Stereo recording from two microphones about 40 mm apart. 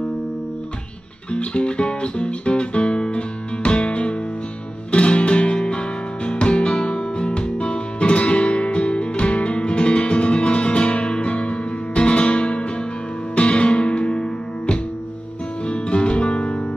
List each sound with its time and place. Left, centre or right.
1.3 s music: left